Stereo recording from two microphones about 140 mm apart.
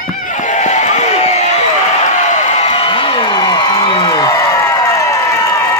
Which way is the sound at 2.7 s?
40° left (ahead or behind).